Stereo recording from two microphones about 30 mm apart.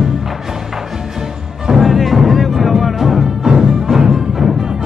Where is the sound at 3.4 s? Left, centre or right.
Right.